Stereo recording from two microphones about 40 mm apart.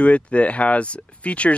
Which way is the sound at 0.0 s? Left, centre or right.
Left.